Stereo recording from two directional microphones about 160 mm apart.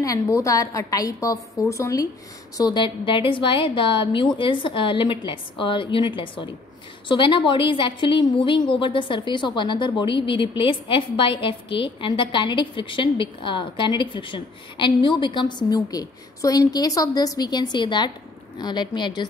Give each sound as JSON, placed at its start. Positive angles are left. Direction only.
{"t": 0.0, "sound": "a woman's voice", "side_deg": 20}